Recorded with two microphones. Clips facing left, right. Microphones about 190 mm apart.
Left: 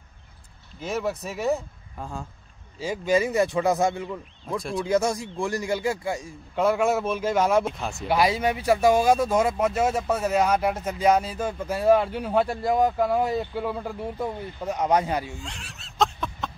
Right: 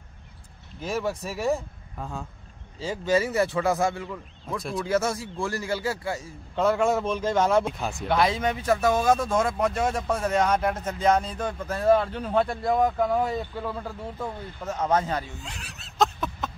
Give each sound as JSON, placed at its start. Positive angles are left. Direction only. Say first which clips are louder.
{"t": 0.7, "sound": "speech", "louder": "left 1 dB", "side_deg": 0}
{"t": 2.8, "sound": "speech", "louder": "left 1 dB", "side_deg": 10}
{"t": 4.6, "sound": "speech", "louder": "left 2 dB", "side_deg": 0}
{"t": 4.8, "sound": "speech", "louder": "left 2 dB", "side_deg": 15}
{"t": 15.3, "sound": "a sound", "louder": "left 2 dB", "side_deg": 0}